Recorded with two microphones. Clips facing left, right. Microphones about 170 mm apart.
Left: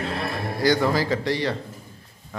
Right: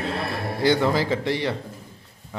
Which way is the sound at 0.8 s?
20° right (ahead or behind).